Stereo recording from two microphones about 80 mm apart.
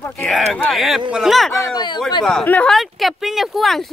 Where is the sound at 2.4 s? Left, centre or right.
Centre.